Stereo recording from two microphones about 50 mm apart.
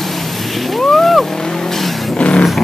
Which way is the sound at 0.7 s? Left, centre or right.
Centre.